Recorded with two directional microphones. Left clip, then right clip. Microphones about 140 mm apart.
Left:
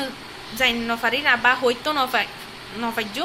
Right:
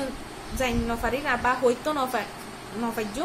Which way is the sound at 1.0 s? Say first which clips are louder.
Left 8 dB; 5° left (ahead or behind).